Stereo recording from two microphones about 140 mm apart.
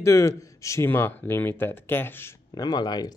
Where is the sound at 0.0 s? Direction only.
20° left (ahead or behind).